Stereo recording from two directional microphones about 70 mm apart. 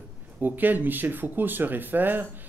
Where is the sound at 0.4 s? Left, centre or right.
Right.